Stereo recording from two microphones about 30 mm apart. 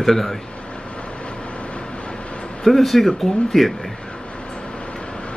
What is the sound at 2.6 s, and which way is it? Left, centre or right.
A man's voice, centre.